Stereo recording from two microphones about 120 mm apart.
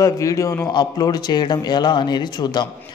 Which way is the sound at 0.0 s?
30° left (ahead or behind).